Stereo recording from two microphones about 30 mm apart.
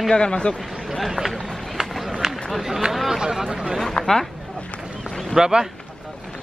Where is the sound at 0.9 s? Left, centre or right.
Centre.